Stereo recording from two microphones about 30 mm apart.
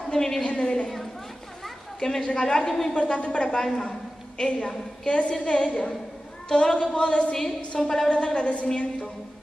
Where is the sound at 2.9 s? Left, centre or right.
Left.